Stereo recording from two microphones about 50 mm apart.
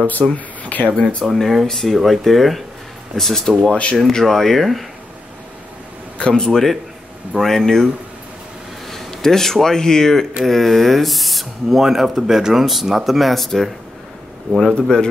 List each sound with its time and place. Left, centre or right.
0.2 s speech: centre
0.7 s speech: left
1.2 s speech: centre
6.1 s a sound: left
6.4 s a man's voice: centre
8.9 s speech: centre
14.8 s a man's voice: centre